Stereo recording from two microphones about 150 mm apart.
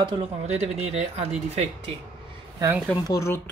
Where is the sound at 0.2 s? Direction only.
45° right (ahead or behind).